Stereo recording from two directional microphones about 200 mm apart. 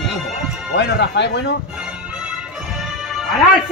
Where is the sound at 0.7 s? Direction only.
60° left (ahead or behind).